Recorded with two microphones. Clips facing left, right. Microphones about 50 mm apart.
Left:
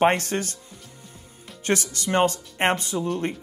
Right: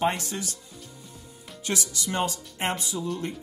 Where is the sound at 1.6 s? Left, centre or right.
Left.